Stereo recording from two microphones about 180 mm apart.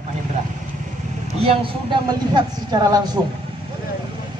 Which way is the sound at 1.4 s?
30° right (ahead or behind).